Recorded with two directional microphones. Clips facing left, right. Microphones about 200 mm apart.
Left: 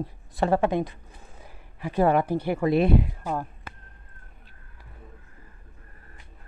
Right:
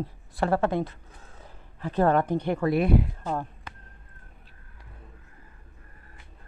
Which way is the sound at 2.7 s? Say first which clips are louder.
Left 2 dB; 25° left (ahead or behind).